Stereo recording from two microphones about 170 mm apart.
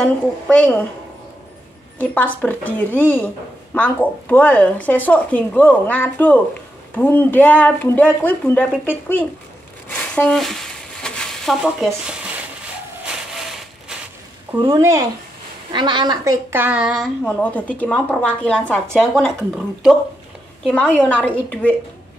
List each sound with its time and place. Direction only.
0.0 s a woman's voice: 5° left (ahead or behind)
2.0 s a woman's voice: 10° left (ahead or behind)
9.8 s a sound: 10° left (ahead or behind)
14.6 s a woman's voice: 20° right (ahead or behind); by 21.7 s 10° left (ahead or behind)